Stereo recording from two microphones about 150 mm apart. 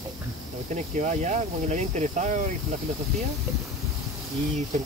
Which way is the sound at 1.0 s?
55° right (ahead or behind).